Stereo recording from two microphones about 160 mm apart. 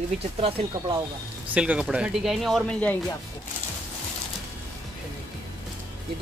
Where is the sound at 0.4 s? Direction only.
35° right (ahead or behind).